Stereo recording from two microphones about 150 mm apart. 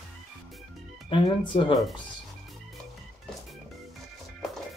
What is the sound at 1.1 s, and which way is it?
Speech, 35° left (ahead or behind).